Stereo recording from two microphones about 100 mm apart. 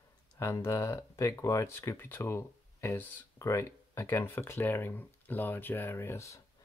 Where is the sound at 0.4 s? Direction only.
30° left (ahead or behind).